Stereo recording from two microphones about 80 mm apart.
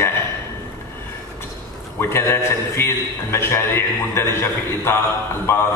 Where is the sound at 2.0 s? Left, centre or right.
Left.